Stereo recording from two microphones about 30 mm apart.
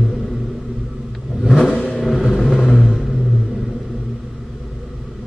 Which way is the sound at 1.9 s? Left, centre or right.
Centre.